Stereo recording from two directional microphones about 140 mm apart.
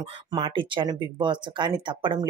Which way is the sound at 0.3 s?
35° right (ahead or behind).